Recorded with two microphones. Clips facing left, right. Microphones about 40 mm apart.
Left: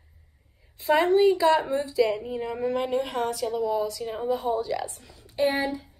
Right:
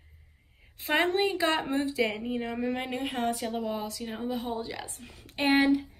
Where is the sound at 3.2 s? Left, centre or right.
Right.